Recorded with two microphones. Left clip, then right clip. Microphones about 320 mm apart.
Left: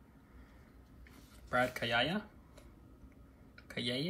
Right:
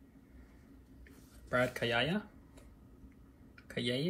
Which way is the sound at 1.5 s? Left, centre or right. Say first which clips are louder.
Even; centre.